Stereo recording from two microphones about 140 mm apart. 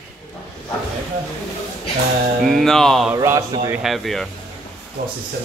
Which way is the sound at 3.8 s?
Centre (ahead or behind).